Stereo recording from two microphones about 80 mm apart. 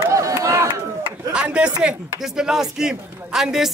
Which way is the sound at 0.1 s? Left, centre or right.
Right.